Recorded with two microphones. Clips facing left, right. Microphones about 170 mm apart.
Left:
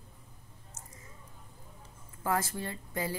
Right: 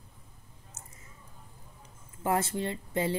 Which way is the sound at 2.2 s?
25° right (ahead or behind).